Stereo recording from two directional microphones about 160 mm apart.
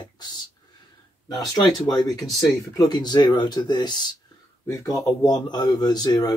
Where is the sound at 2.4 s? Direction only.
25° left (ahead or behind).